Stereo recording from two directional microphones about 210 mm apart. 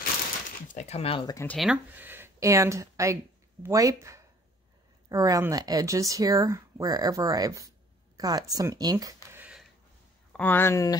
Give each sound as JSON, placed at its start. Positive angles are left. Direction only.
{"t": 0.7, "sound": "speech", "side_deg": 30}
{"t": 1.6, "sound": "speech", "side_deg": -5}
{"t": 10.3, "sound": "speech", "side_deg": 10}